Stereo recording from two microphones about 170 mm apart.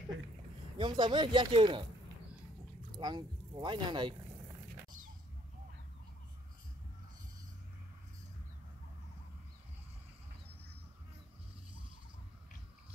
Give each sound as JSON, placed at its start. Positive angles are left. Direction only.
{"t": 0.7, "sound": "speech", "side_deg": -25}
{"t": 3.0, "sound": "speech", "side_deg": -25}